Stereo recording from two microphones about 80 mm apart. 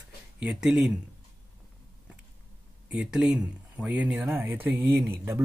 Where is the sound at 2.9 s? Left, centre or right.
Centre.